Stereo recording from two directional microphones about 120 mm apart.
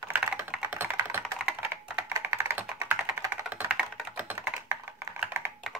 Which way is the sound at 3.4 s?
10° right (ahead or behind).